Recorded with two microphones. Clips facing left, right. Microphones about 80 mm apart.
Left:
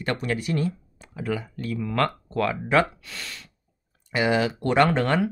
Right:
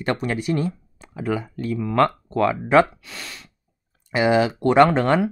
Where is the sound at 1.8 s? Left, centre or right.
Right.